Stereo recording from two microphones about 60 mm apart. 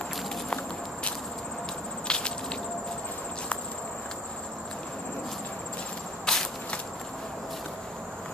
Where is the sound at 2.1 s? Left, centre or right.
Centre.